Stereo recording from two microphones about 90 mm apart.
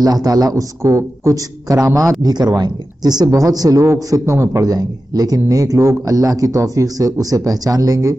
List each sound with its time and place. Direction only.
0.0 s a man's voice: 45° right (ahead or behind)
4.7 s speech: 45° right (ahead or behind)